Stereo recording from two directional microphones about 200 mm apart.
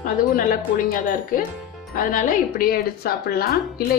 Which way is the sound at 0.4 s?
45° left (ahead or behind).